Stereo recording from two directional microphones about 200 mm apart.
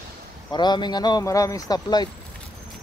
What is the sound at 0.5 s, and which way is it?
Speech, 20° left (ahead or behind).